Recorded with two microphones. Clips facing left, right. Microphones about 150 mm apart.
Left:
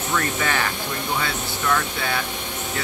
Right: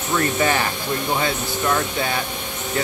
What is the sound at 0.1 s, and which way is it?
Speech, 25° right (ahead or behind).